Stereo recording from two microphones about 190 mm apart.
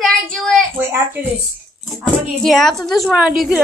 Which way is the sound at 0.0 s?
5° left (ahead or behind).